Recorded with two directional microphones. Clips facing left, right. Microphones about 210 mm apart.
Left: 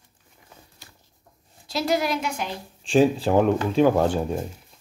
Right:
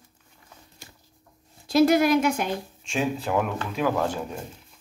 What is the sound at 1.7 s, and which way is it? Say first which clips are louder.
Speech: right 6 dB; 55° right (ahead or behind).